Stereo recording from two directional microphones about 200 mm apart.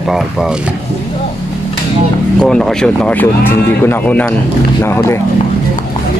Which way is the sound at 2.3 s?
5° left (ahead or behind).